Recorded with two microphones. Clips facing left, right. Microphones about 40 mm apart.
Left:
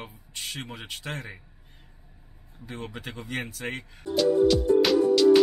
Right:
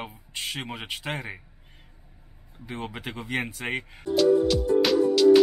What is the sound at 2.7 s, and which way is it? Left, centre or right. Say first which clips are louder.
Speech: right 3 dB; right.